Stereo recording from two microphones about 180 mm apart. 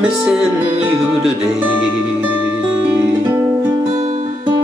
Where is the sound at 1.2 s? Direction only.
10° right (ahead or behind).